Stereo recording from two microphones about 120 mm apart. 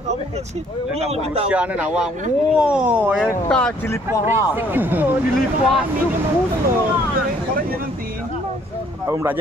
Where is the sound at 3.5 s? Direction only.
10° left (ahead or behind).